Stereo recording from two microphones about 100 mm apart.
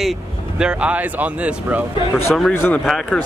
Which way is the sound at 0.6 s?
10° right (ahead or behind).